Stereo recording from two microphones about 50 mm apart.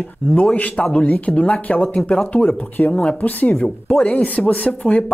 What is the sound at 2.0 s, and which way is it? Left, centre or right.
Speech, centre.